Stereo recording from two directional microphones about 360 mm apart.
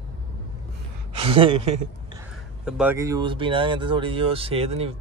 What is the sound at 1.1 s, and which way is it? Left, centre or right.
Speech, centre.